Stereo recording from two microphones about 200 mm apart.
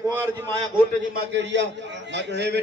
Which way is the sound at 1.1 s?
60° right (ahead or behind).